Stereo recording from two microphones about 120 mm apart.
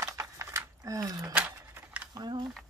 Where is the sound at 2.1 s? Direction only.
35° right (ahead or behind).